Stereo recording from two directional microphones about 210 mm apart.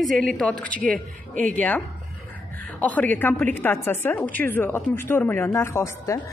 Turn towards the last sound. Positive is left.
turn(degrees=10)  # may be behind; listen again after turning